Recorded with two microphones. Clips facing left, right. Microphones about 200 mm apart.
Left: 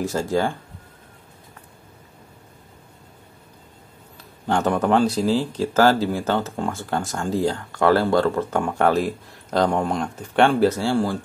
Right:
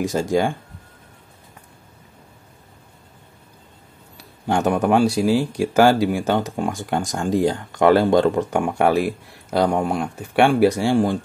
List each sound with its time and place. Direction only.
0.0 s speech: 15° right (ahead or behind)
4.2 s speech: 10° right (ahead or behind)